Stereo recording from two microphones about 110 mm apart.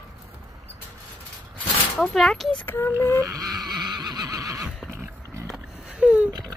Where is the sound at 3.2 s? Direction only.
35° right (ahead or behind).